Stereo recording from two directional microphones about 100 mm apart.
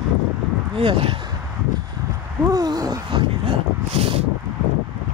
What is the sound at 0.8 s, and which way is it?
Speech, 70° right (ahead or behind).